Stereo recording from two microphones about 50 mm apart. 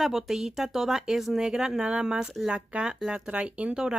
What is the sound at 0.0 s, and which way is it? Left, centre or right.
Speech, centre.